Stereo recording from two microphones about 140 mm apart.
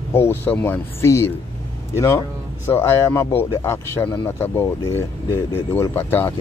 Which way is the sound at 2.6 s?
15° left (ahead or behind).